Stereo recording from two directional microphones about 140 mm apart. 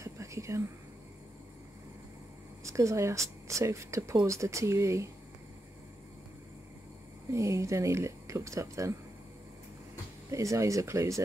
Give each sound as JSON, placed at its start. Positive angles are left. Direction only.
{"t": 0.0, "sound": "whispering", "side_deg": -20}
{"t": 2.6, "sound": "speech", "side_deg": -20}
{"t": 7.3, "sound": "speech", "side_deg": -20}
{"t": 10.3, "sound": "speech", "side_deg": -20}